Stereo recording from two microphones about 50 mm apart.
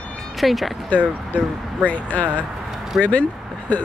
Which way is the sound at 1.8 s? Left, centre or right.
Left.